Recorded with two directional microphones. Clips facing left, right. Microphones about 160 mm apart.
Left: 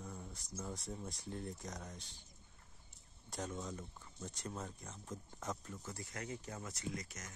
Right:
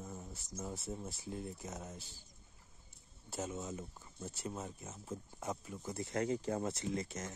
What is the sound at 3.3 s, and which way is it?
Speech, 5° right (ahead or behind).